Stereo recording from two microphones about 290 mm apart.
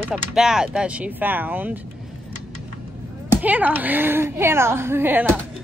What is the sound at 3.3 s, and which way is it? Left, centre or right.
A woman's voice, centre.